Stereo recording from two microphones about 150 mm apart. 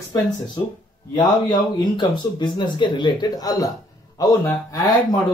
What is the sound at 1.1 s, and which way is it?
Speech, 30° left (ahead or behind).